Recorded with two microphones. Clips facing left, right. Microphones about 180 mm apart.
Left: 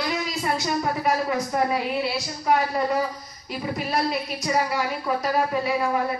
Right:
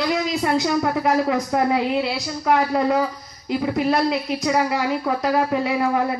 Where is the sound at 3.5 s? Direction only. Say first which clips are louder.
Right 7 dB; 60° right (ahead or behind).